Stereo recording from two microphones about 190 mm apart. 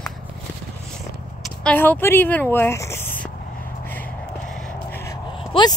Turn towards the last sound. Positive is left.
turn(degrees=25)  # may be behind; listen again after turning